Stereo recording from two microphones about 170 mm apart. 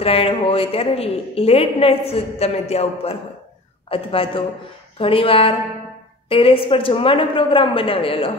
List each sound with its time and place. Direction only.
0.0 s a woman's voice: 35° left (ahead or behind)